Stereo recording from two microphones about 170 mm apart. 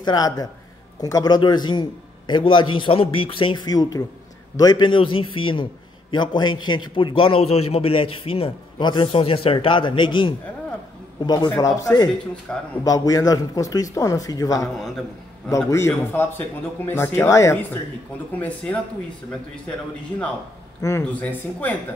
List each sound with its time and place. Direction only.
0.0 s a man's voice: 20° left (ahead or behind)
12.5 s speech: 5° left (ahead or behind)
12.8 s a man's voice: 20° left (ahead or behind)
20.8 s speech: 15° left (ahead or behind)